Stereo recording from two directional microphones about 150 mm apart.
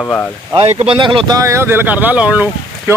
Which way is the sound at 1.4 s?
20° right (ahead or behind).